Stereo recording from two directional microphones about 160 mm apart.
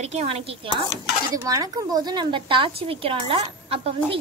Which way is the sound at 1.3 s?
20° right (ahead or behind).